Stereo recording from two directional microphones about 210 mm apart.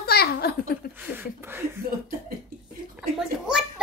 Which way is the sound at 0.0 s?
50° left (ahead or behind).